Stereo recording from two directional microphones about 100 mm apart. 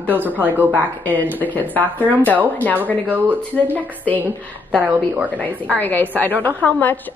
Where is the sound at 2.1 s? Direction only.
15° right (ahead or behind).